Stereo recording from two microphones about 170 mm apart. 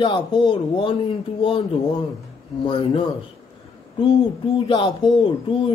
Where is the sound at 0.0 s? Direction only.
25° left (ahead or behind).